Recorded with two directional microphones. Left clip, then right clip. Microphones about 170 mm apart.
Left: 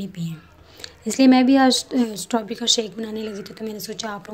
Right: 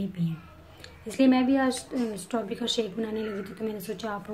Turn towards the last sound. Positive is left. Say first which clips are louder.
# left 3 dB
turn(degrees=40)  # may be behind; listen again after turning